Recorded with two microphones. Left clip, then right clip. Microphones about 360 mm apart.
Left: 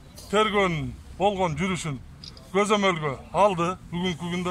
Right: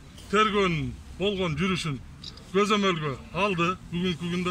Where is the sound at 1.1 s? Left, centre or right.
Left.